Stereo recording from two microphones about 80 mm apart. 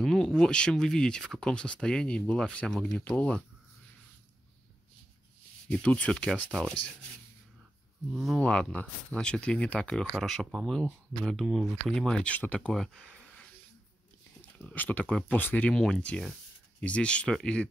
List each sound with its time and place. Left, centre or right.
0.0 s speech: centre
5.7 s speech: centre
8.1 s speech: centre
8.4 s speech: centre
14.4 s speech: left
15.7 s speech: centre